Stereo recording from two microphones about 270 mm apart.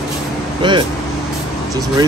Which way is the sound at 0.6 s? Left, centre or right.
Centre.